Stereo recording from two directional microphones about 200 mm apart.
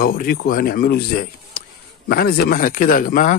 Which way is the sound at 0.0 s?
45° left (ahead or behind).